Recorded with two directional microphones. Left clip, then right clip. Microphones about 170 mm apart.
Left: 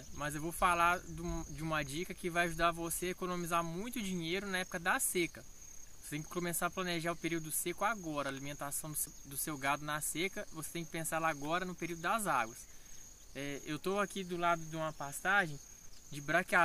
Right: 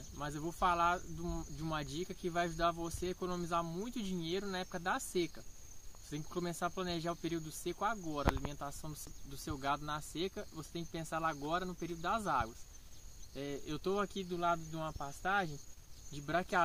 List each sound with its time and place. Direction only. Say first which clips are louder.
0.2 s speech: left 2 dB; 20° left (ahead or behind)